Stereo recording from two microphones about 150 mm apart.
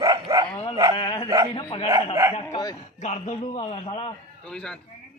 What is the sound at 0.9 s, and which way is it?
Dog, 35° left (ahead or behind).